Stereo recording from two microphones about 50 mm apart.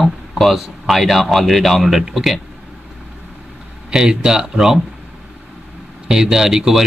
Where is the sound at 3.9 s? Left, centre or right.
Centre.